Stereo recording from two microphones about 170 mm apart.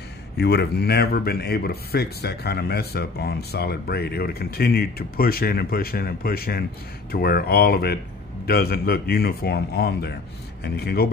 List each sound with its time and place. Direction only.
0.4 s speech: 75° left (ahead or behind)